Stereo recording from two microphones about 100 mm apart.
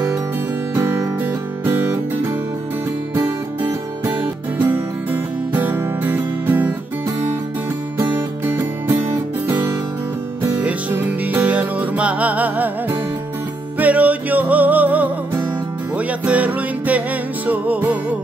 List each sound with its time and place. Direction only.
0.7 s music: 25° right (ahead or behind)
3.3 s music: 20° right (ahead or behind)
8.0 s music: 20° right (ahead or behind)
10.6 s music: 15° right (ahead or behind)
13.7 s music: 15° right (ahead or behind)